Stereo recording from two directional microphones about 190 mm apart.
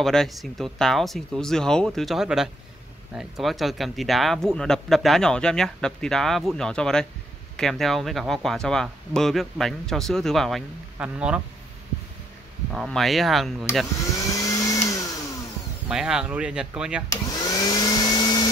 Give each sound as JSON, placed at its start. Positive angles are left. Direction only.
{"t": 0.0, "sound": "speech", "side_deg": 0}
{"t": 12.7, "sound": "speech", "side_deg": 0}
{"t": 14.1, "sound": "vacuum cleaner", "side_deg": 15}
{"t": 15.9, "sound": "speech", "side_deg": -5}
{"t": 17.1, "sound": "vacuum cleaner", "side_deg": 20}